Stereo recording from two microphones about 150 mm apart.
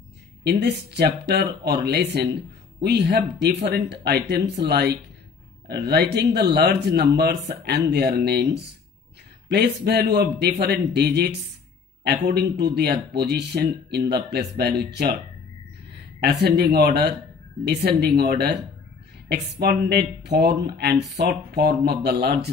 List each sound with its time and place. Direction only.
0.4 s speech: 90° right